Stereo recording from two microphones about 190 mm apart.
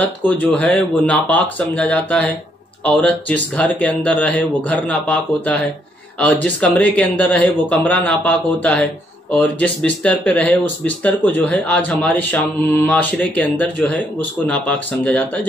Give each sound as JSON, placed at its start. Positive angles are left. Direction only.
{"t": 0.2, "sound": "speech", "side_deg": 10}